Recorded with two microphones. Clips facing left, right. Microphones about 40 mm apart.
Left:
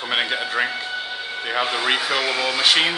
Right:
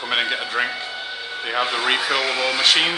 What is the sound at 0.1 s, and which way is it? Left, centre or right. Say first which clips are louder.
Speech: even; centre.